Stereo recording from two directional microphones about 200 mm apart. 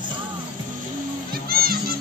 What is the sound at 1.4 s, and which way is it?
Music, 50° right (ahead or behind).